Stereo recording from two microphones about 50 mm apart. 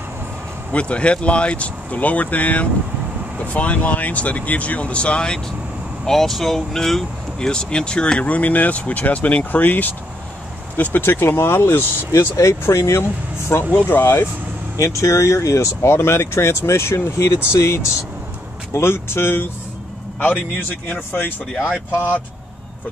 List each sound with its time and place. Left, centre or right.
0.7 s speech: left
6.0 s speech: centre; by 11.8 s left
12.1 s speech: left
13.7 s speech: left
14.8 s speech: left
18.9 s speech: left
20.2 s speech: left